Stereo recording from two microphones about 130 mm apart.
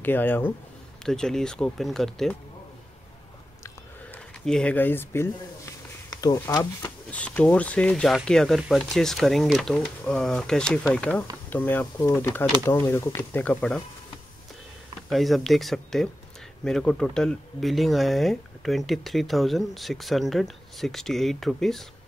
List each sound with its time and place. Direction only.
0.0 s speech: 15° left (ahead or behind)
1.0 s speech: 5° left (ahead or behind)
4.5 s speech: 10° left (ahead or behind); by 6.9 s 25° left (ahead or behind)
7.1 s speech: 10° left (ahead or behind)
15.0 s speech: centre (ahead or behind)